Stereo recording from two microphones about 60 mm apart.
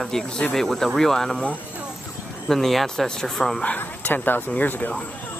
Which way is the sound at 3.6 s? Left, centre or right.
Left.